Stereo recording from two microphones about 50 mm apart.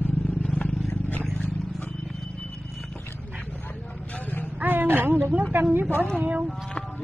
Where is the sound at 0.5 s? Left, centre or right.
Left.